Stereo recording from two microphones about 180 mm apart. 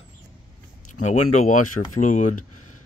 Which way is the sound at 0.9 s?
40° left (ahead or behind).